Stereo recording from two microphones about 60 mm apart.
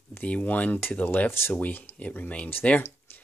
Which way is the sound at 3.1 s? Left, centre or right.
Left.